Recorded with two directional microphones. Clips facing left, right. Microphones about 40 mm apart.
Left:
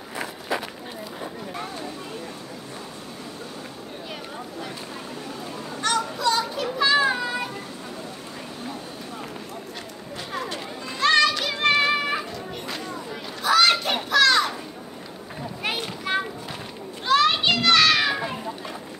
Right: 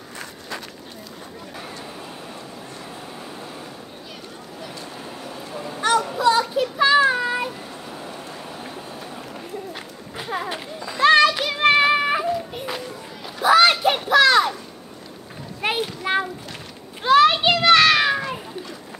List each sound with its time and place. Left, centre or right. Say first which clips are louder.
0.1 s run: left 6 dB; centre
5.8 s a sound: right 5 dB; centre
6.4 s children playing: right 4 dB; centre
7.1 s child singing: right 4 dB; centre
10.1 s children playing: right 4 dB; centre
15.6 s children playing: right 5 dB; centre